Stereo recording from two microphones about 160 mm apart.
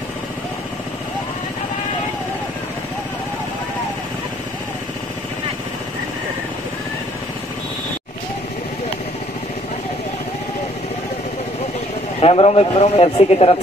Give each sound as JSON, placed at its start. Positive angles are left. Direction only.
{"t": 12.2, "sound": "a man's voice", "side_deg": 40}